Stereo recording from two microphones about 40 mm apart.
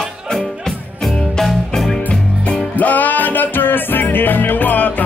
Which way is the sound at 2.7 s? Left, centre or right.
Left.